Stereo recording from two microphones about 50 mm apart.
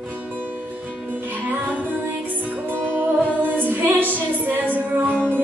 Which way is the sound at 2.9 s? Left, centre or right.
Right.